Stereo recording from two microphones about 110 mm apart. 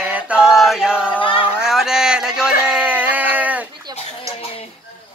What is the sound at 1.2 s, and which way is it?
Speech, 50° left (ahead or behind).